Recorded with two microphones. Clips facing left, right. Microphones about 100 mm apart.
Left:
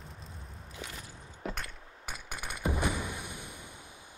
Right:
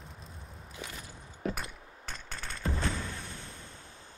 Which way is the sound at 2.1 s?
15° left (ahead or behind).